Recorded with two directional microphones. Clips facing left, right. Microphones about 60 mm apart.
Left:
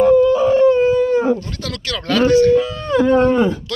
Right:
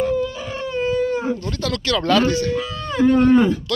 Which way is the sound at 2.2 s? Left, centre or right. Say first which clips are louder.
Left 9 dB; left.